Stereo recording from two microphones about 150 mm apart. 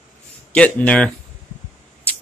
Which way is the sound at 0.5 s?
10° left (ahead or behind).